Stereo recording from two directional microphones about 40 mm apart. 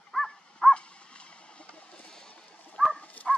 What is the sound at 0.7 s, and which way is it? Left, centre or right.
Dog, left.